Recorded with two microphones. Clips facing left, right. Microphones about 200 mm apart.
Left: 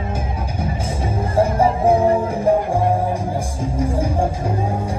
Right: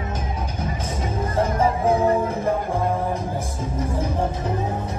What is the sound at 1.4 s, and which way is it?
Music, 30° left (ahead or behind).